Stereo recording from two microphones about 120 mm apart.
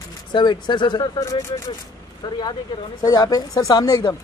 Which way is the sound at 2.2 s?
35° left (ahead or behind).